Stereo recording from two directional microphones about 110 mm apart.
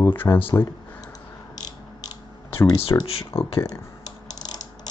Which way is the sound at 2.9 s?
30° left (ahead or behind).